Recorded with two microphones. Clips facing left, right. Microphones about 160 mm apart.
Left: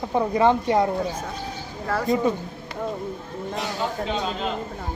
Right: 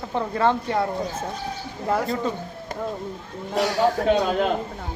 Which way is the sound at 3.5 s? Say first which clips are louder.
Right 8 dB; 70° right (ahead or behind).